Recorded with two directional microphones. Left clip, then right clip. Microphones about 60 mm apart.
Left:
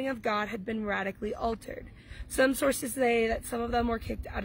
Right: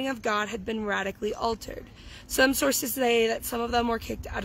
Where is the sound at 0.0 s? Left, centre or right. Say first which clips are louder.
Right 3 dB; right.